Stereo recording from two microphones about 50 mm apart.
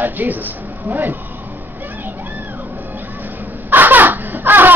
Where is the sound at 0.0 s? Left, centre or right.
Right.